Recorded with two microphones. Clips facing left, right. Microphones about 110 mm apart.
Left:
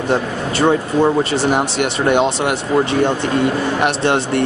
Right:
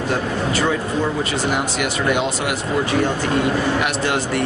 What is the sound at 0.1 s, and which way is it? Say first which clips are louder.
Speech: left 3 dB; 30° left (ahead or behind).